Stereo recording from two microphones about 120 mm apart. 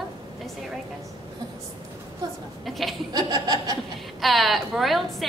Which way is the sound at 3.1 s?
35° right (ahead or behind).